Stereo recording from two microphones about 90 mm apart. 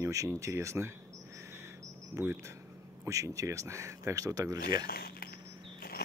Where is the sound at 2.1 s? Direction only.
35° right (ahead or behind).